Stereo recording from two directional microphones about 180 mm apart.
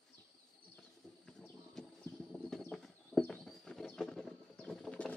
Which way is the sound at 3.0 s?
5° left (ahead or behind).